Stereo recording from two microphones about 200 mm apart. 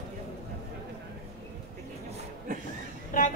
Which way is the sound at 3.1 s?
40° left (ahead or behind).